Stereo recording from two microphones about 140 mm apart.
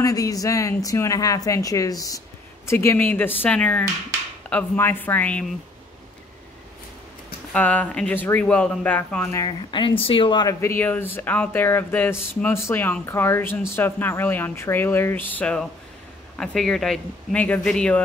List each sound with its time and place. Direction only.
0.0 s speech: 25° left (ahead or behind); by 5.5 s 10° left (ahead or behind)
7.5 s speech: 10° left (ahead or behind)
9.4 s speech: 35° left (ahead or behind)
10.6 s speech: 15° left (ahead or behind)